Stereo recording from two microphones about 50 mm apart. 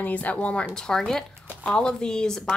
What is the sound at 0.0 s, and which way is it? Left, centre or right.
Speech, left.